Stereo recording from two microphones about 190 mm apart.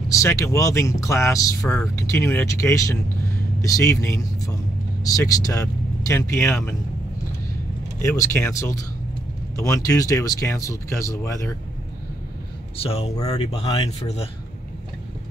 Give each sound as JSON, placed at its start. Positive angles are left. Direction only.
{"t": 0.1, "sound": "speech", "side_deg": 15}
{"t": 1.7, "sound": "speech", "side_deg": 5}
{"t": 8.0, "sound": "speech", "side_deg": 15}
{"t": 12.7, "sound": "speech", "side_deg": 30}